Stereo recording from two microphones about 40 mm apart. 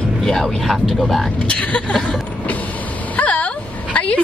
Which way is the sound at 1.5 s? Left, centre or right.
Left.